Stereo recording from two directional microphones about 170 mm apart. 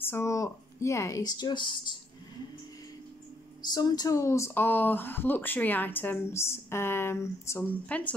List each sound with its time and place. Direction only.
0.0 s speech: 15° left (ahead or behind)
3.7 s speech: 25° left (ahead or behind)